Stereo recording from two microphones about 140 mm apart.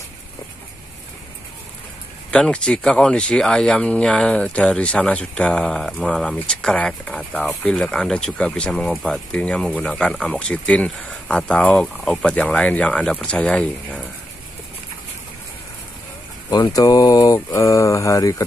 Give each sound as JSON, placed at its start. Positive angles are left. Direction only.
{"t": 2.3, "sound": "speech", "side_deg": 5}
{"t": 16.4, "sound": "speech", "side_deg": 25}